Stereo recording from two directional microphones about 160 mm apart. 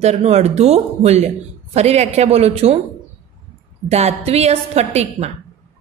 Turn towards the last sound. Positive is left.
turn(degrees=-45)  # may be behind; listen again after turning